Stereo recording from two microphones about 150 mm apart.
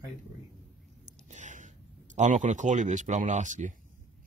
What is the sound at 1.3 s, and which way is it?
Speech, 55° right (ahead or behind).